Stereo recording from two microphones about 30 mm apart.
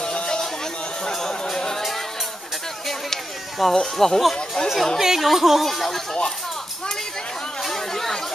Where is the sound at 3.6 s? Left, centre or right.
Centre.